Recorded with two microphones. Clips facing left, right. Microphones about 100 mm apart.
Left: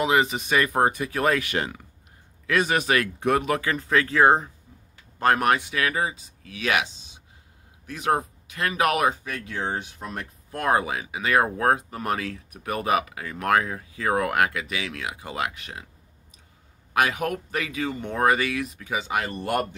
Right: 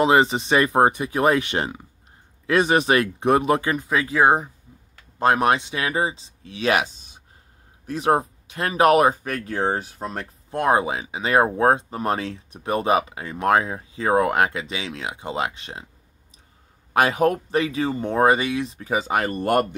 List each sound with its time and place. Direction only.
0.0 s speech: 30° right (ahead or behind)
16.9 s speech: 35° right (ahead or behind); by 19.6 s 50° right (ahead or behind)